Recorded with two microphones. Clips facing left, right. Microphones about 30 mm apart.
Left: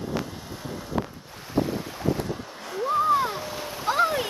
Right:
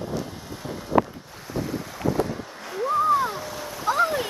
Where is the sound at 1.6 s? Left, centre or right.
Left.